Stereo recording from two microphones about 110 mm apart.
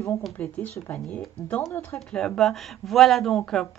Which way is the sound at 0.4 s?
15° left (ahead or behind).